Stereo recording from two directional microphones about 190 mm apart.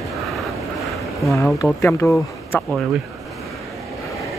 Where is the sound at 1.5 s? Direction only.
15° left (ahead or behind).